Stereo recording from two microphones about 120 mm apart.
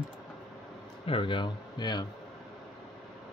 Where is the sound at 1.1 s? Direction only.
45° left (ahead or behind).